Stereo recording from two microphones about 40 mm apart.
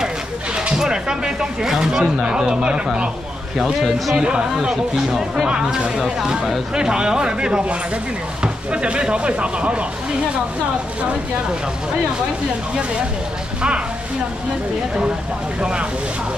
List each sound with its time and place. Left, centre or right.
0.7 s a man's voice: centre
3.8 s a man's voice: centre
5.5 s a man's voice: centre
15.6 s a man's voice: right